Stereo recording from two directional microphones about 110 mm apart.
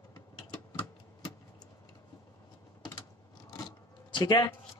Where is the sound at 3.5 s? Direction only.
35° left (ahead or behind).